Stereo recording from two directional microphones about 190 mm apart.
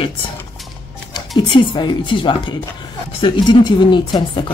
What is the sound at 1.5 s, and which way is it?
Speech, 25° left (ahead or behind).